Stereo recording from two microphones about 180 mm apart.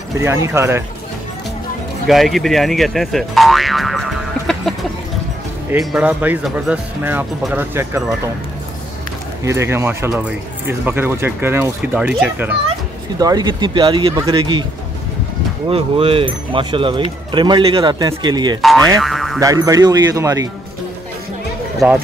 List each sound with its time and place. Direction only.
0.2 s speech: 15° right (ahead or behind)
2.0 s speech: centre (ahead or behind)
9.4 s speech: 15° right (ahead or behind)
13.2 s speech: 20° right (ahead or behind)
15.7 s speech: 30° right (ahead or behind)
18.6 s speech: centre (ahead or behind)
18.9 s boing: centre (ahead or behind)
19.4 s speech: 20° right (ahead or behind)